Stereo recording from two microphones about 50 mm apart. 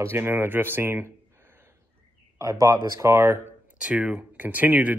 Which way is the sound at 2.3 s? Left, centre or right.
Right.